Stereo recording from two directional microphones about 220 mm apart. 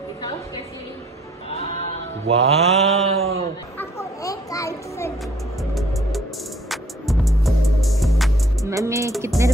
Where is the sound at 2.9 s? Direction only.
30° right (ahead or behind).